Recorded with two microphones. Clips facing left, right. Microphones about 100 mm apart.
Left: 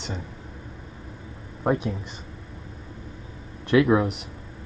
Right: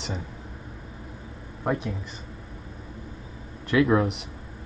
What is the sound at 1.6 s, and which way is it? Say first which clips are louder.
Speech: left 3 dB; 20° left (ahead or behind).